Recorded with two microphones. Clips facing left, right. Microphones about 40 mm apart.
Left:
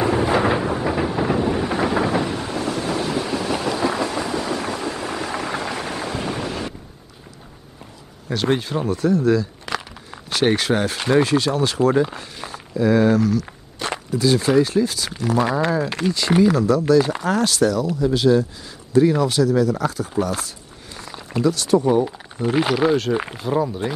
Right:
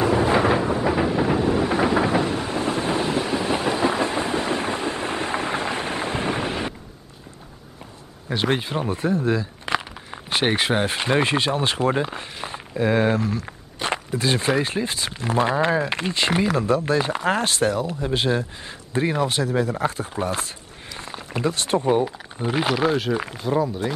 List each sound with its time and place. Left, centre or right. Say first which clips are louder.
0.0 s train: even; centre
0.4 s a sound: even; centre
1.6 s thunder: right 1 dB; centre
2.3 s train: even; right
8.3 s speech: left 2 dB; right
13.7 s walk: right 1 dB; centre
14.1 s speech: left 6 dB; right
22.0 s speech: left 2 dB; centre
23.1 s speech: left 1 dB; centre